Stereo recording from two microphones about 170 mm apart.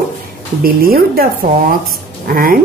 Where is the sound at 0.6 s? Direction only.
60° right (ahead or behind).